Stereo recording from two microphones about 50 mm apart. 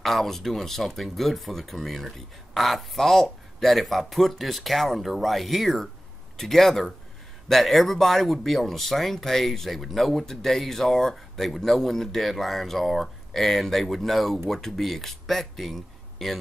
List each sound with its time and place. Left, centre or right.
0.0 s speech: centre